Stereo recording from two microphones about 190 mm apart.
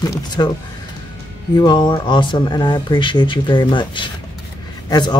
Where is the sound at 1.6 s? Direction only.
20° left (ahead or behind).